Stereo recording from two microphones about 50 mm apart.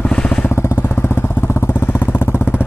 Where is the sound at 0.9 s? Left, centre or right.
Left.